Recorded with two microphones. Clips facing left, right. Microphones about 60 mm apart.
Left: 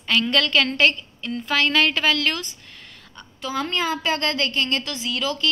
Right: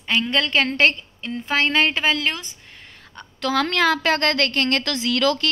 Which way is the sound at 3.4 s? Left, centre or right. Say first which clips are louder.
Right 5 dB; right.